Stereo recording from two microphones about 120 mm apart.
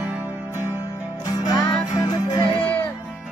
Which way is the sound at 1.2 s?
30° left (ahead or behind).